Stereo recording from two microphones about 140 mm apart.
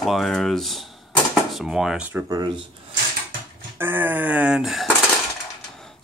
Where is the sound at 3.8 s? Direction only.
15° right (ahead or behind).